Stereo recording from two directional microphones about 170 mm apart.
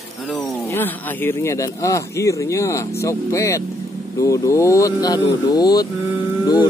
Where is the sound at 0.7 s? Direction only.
10° left (ahead or behind).